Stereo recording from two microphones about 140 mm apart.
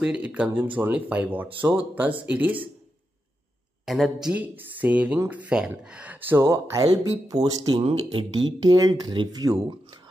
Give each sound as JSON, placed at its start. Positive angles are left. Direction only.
{"t": 0.0, "sound": "speech", "side_deg": -10}
{"t": 3.8, "sound": "speech", "side_deg": 0}